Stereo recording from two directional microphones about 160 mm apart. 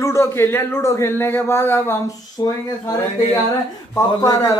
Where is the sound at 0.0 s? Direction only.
15° left (ahead or behind).